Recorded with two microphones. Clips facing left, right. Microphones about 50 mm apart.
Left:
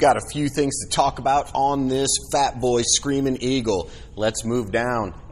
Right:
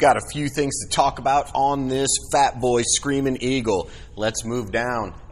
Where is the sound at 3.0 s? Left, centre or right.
Right.